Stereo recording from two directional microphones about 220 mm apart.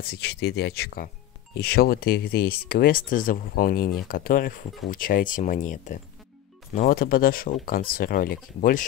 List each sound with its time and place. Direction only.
0.0 s speech: 45° left (ahead or behind)